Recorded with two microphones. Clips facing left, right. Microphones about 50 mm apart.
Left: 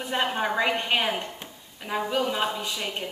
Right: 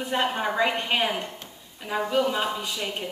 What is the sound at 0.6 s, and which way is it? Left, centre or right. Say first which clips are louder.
A woman's voice: right 2 dB; centre.